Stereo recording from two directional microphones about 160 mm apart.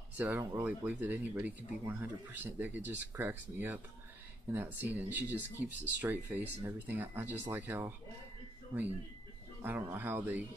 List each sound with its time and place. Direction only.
0.2 s speech: 15° right (ahead or behind)